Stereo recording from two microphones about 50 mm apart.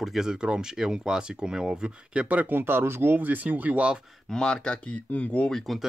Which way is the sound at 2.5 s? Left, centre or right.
Right.